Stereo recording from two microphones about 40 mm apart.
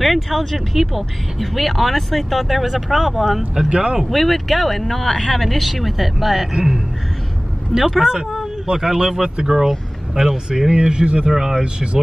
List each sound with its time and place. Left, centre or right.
0.0 s speech: centre
3.6 s speech: right
4.0 s speech: centre
6.5 s speech: centre
8.0 s speech: centre
10.7 s speech: right
11.2 s speech: centre